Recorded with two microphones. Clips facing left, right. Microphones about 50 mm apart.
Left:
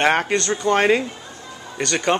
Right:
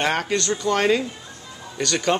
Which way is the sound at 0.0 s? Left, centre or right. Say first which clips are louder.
Left 4 dB; left.